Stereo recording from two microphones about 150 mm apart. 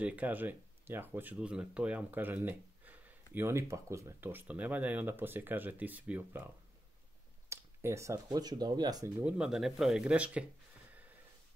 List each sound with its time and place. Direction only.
0.0 s speech: 10° right (ahead or behind)
9.2 s speech: 5° right (ahead or behind)